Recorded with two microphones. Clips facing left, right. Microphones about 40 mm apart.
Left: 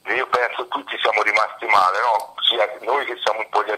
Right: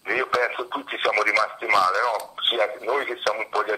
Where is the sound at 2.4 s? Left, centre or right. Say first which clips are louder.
Left 2 dB; left.